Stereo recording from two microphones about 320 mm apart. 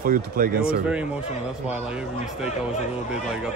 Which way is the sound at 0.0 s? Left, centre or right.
Right.